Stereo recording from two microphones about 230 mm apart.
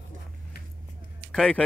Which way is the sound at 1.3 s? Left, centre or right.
Centre.